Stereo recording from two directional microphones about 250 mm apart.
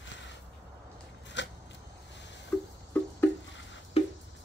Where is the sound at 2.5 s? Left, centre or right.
Centre.